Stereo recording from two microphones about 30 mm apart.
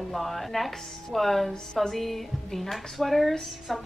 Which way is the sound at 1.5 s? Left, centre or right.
Centre.